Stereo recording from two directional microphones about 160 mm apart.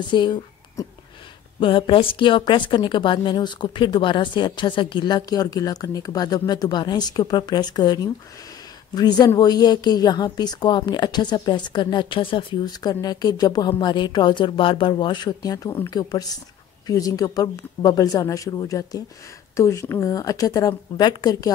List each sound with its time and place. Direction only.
0.1 s a woman's voice: 25° left (ahead or behind)